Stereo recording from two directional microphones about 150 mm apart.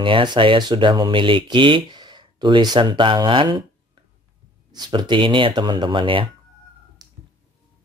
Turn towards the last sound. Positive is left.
turn(degrees=-25)  # may be behind; listen again after turning